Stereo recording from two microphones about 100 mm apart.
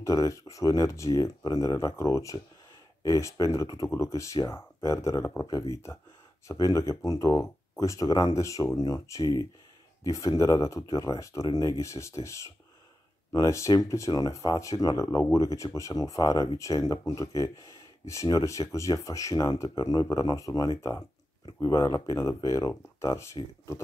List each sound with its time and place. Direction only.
0.0 s speech: 35° left (ahead or behind)